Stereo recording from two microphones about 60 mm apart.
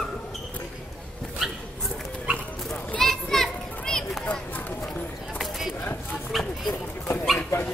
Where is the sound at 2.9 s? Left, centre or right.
Centre.